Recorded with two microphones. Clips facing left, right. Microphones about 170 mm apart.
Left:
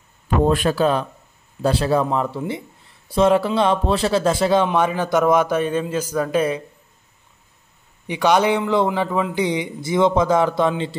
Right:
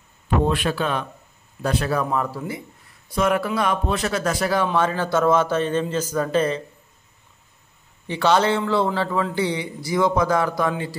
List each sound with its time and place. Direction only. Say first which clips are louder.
0.5 s speech: left 5 dB; 40° left (ahead or behind); by 6.6 s 10° left (ahead or behind)
8.1 s speech: left 2 dB; 15° left (ahead or behind)